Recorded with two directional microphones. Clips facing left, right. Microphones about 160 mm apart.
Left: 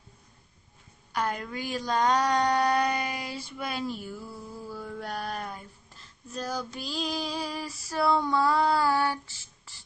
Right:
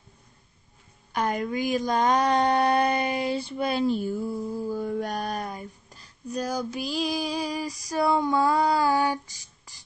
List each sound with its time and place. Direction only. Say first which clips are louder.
1.1 s speech: right 5 dB; 20° right (ahead or behind)
4.6 s mantra: right 6 dB; 20° right (ahead or behind)
5.5 s female singing: right 5 dB; 15° right (ahead or behind)